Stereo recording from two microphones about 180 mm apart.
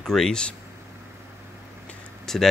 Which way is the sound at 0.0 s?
5° left (ahead or behind).